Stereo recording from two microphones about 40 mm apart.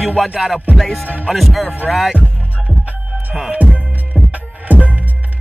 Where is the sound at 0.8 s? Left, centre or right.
Centre.